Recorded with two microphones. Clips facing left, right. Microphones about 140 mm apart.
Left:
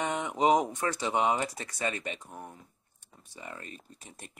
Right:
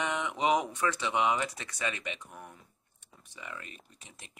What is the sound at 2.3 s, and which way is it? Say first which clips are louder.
Speech: left 4 dB; 30° left (ahead or behind).